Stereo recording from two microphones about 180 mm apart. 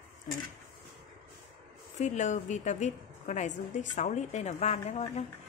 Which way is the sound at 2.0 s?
40° left (ahead or behind).